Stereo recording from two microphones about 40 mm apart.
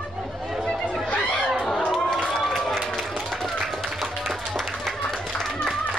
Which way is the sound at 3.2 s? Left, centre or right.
Centre.